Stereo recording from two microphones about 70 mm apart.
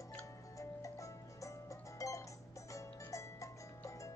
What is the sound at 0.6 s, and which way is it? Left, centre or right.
Music, left.